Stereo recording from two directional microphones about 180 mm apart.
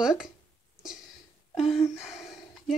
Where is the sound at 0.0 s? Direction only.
5° right (ahead or behind).